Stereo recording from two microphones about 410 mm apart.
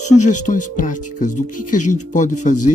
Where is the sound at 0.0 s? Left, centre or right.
Centre.